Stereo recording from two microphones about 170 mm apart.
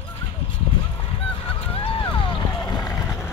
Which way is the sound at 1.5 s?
35° left (ahead or behind).